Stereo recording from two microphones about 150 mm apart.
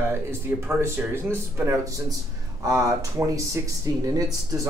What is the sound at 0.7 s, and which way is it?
Speech, 15° right (ahead or behind).